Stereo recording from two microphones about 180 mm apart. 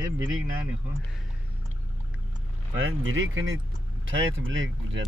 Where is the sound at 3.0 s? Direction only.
90° right.